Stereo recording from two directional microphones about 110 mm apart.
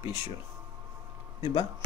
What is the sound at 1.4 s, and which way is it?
Speech, 55° left (ahead or behind).